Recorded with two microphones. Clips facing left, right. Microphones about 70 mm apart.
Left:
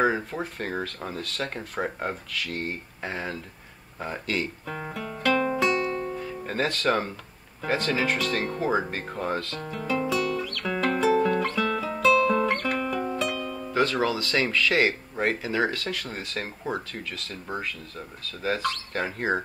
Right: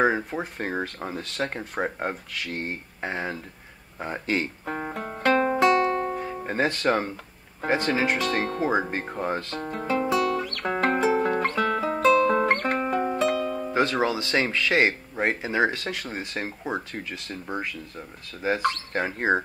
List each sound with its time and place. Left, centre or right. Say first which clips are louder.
0.0 s speech: right 1 dB; centre
4.0 s music: right 2 dB; right
6.2 s speech: right 2 dB; right
8.9 s speech: right 1 dB; centre
9.6 s speech: right 2 dB; right
10.3 s guitar: right 2 dB; right
11.1 s music: left 1 dB; right